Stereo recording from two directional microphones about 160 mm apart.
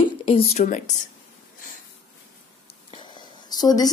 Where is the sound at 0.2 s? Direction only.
40° left (ahead or behind).